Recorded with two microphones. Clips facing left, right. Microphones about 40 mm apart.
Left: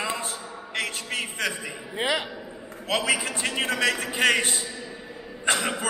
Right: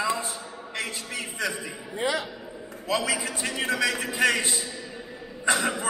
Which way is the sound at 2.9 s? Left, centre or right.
Left.